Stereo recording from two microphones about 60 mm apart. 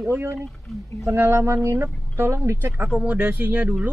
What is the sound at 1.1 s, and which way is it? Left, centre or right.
Speech, right.